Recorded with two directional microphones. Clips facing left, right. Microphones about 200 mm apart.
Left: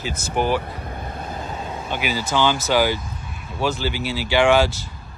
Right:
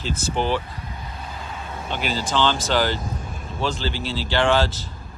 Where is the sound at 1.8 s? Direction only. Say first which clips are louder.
Even; 10° left (ahead or behind).